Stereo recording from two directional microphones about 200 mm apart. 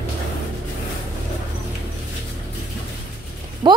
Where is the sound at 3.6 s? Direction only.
20° right (ahead or behind).